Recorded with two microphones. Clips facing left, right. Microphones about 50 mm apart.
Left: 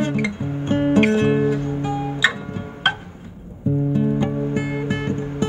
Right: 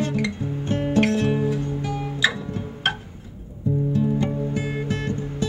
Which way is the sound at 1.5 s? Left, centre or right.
Centre.